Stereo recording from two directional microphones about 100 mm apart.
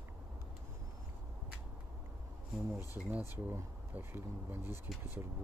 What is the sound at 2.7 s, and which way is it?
Speech, 20° right (ahead or behind).